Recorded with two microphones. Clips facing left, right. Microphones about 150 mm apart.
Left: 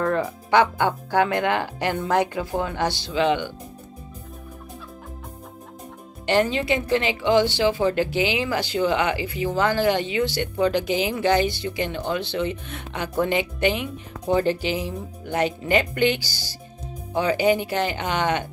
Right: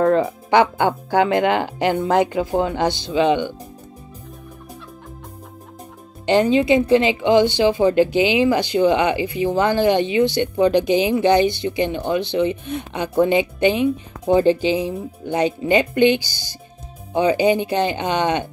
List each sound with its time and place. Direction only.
0.0 s speech: 25° right (ahead or behind)
6.2 s speech: 20° right (ahead or behind)